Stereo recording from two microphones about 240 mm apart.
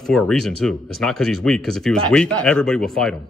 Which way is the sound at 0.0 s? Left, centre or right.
Centre.